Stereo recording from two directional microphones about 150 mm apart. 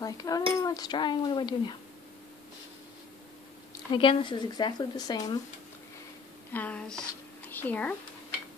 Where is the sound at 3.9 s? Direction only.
35° left (ahead or behind).